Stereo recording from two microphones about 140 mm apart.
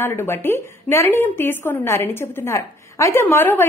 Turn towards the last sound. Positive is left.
turn(degrees=15)  # may be behind; listen again after turning